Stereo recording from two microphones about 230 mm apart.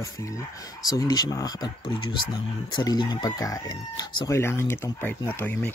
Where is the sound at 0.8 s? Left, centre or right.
Centre.